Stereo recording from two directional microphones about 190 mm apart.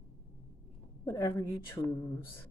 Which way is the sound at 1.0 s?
15° left (ahead or behind).